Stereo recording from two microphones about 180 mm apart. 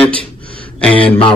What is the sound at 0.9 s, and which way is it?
Speech, 30° left (ahead or behind).